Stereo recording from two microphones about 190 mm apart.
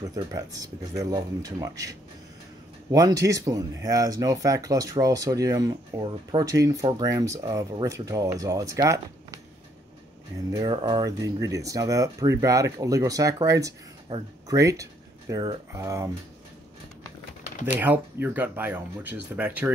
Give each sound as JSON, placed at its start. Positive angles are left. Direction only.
{"t": 0.0, "sound": "speech", "side_deg": -20}
{"t": 10.5, "sound": "speech", "side_deg": -20}
{"t": 17.7, "sound": "speech", "side_deg": -10}